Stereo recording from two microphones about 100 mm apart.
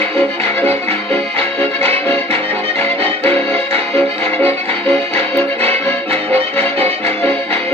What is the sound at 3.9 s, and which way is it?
Music, 20° left (ahead or behind).